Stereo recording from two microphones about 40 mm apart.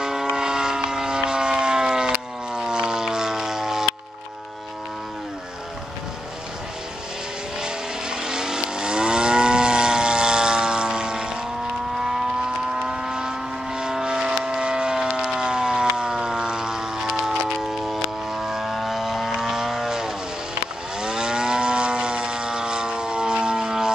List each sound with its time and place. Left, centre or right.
0.0 s vehicle: centre
7.6 s vehicle: centre
12.8 s vehicle: centre